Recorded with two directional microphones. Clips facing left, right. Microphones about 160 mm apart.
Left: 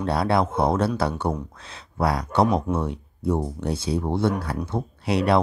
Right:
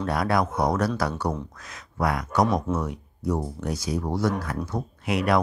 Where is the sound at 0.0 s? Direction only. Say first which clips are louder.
Left 2 dB; 30° left (ahead or behind).